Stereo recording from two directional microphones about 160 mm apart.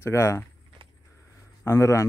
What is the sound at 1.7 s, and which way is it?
Speech, 20° left (ahead or behind).